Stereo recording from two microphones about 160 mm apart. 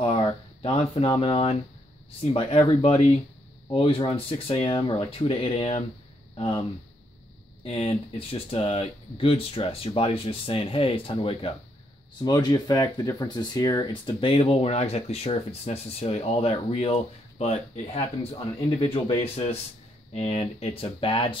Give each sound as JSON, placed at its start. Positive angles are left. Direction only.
{"t": 0.0, "sound": "a sound", "side_deg": 35}
{"t": 2.0, "sound": "speech", "side_deg": 40}
{"t": 7.6, "sound": "speech", "side_deg": 40}